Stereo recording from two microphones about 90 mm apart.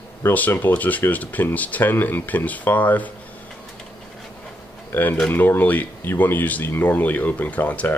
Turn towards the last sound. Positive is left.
turn(degrees=15)  # may be behind; listen again after turning